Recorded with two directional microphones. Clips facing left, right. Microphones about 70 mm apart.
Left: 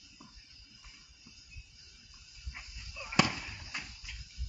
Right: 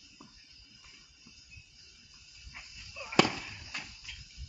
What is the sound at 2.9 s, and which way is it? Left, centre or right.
Fireworks, centre.